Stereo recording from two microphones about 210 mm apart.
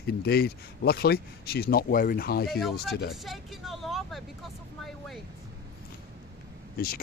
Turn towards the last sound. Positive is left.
turn(degrees=45)  # may be behind; listen again after turning